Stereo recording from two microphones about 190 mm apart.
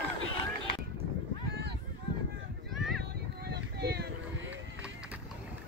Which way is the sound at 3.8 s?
60° right (ahead or behind).